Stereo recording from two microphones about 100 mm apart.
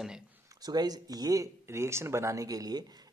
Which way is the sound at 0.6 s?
40° right (ahead or behind).